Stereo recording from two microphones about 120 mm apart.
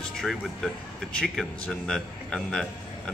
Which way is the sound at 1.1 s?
5° left (ahead or behind).